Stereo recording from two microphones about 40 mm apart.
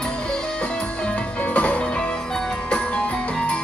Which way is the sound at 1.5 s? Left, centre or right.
Left.